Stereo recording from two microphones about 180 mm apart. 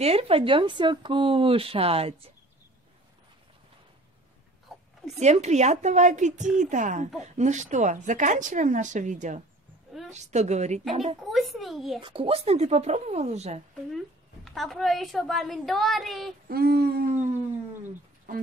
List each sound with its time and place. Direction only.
0.0 s speech: 35° right (ahead or behind)
4.7 s a sound: centre (ahead or behind)
5.2 s speech: 40° right (ahead or behind)
11.2 s a woman's voice: centre (ahead or behind)
12.0 s speech: 30° right (ahead or behind)
13.9 s a woman's voice: centre (ahead or behind)
16.4 s a sound: 60° right (ahead or behind)
18.3 s speech: 50° right (ahead or behind)